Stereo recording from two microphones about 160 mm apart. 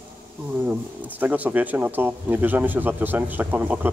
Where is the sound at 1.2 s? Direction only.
10° right (ahead or behind).